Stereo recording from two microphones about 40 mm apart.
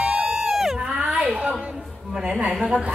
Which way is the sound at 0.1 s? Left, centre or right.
Right.